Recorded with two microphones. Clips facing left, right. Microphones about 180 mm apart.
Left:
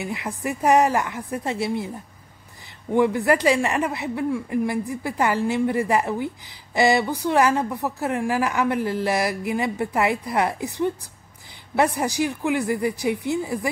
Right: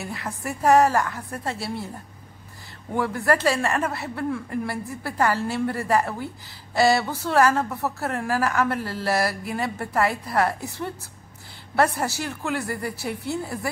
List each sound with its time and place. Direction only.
0.0 s speech: 15° left (ahead or behind)
2.9 s speech: 15° left (ahead or behind)